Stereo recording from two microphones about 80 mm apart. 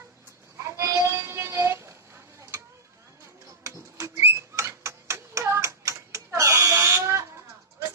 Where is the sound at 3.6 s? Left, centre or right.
Right.